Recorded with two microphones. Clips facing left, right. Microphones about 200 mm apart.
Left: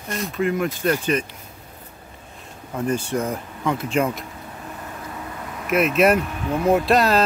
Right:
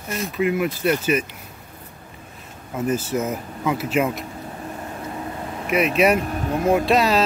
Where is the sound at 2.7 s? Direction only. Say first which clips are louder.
Even; 5° right (ahead or behind).